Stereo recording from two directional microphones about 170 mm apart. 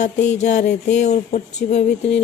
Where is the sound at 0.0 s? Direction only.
45° left (ahead or behind).